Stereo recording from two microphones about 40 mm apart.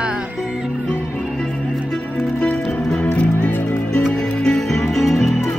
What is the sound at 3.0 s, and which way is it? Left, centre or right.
Music, left.